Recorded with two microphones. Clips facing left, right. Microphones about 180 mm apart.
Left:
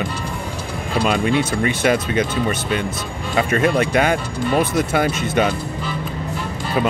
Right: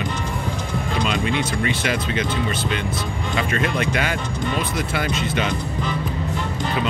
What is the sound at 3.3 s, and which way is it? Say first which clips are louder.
Speech: left 6 dB; 35° left (ahead or behind).